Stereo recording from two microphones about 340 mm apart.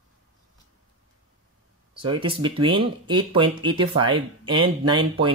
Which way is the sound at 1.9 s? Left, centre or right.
Centre.